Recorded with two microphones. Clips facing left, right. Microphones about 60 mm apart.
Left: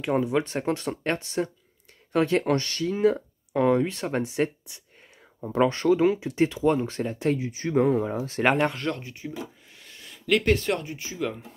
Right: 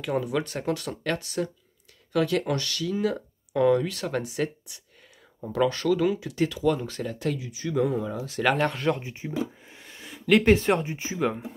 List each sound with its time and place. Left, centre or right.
0.0 s speech: left
8.7 s speech: centre
9.0 s speech: right